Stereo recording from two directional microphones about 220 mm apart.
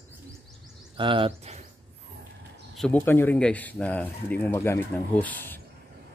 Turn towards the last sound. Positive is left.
turn(degrees=10)  # may be behind; listen again after turning